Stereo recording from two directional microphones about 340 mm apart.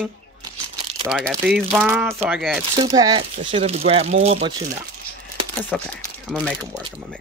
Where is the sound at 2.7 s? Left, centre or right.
Centre.